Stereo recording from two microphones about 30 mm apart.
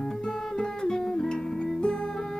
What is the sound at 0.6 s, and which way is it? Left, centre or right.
Music, left.